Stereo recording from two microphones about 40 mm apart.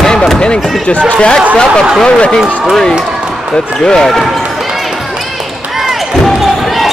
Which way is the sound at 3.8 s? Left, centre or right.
Centre.